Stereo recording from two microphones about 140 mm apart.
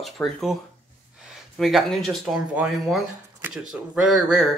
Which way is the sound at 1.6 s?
Centre (ahead or behind).